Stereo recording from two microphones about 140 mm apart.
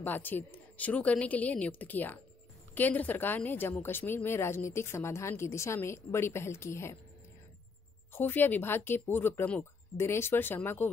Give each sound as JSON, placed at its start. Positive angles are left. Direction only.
{"t": 0.0, "sound": "speech", "side_deg": 15}
{"t": 8.1, "sound": "speech", "side_deg": 15}